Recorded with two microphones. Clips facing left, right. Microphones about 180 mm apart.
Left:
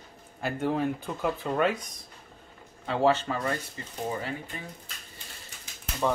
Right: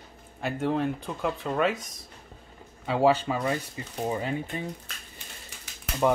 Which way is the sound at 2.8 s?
10° right (ahead or behind).